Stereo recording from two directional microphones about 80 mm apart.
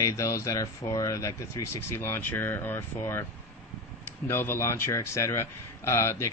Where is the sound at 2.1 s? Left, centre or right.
Left.